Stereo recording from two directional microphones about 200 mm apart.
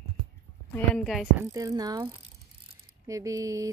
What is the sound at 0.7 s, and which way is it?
Speech, 5° left (ahead or behind).